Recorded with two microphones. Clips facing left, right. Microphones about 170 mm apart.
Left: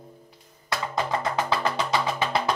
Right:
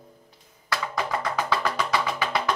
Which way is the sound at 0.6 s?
25° left (ahead or behind).